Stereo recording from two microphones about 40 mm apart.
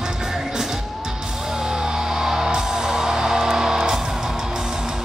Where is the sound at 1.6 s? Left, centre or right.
Centre.